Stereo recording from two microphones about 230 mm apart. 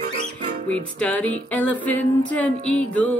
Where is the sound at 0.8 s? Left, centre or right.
Centre.